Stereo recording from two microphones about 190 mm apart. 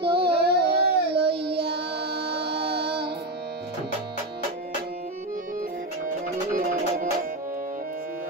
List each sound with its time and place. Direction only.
0.0 s child singing: 60° right (ahead or behind)
6.5 s music: 45° right (ahead or behind)